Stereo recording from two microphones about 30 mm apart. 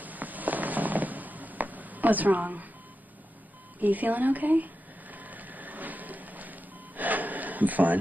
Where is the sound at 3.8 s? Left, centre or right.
Right.